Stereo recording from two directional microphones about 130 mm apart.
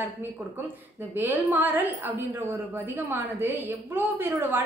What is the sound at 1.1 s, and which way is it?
A woman's voice, 15° right (ahead or behind).